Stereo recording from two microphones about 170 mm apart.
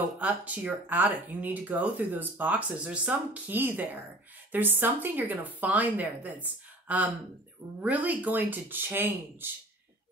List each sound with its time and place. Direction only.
0.2 s speech: 10° right (ahead or behind)